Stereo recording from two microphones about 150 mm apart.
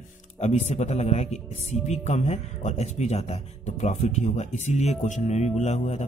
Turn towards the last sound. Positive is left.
turn(degrees=50)  # may be behind; listen again after turning